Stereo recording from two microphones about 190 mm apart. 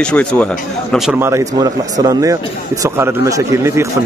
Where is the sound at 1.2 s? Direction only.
15° right (ahead or behind).